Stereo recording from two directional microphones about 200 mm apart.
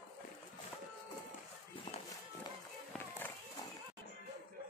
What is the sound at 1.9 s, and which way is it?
Music, 30° left (ahead or behind).